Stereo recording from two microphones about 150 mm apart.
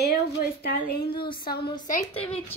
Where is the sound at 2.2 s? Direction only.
40° left (ahead or behind).